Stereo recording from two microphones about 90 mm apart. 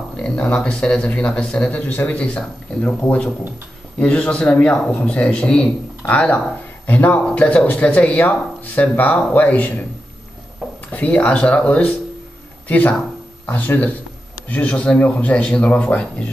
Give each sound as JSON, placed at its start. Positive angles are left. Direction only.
{"t": 0.2, "sound": "speech", "side_deg": 10}
{"t": 10.9, "sound": "a man's voice", "side_deg": 15}